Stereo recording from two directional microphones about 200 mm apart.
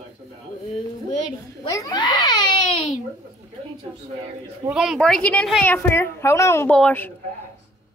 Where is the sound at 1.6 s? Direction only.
20° left (ahead or behind).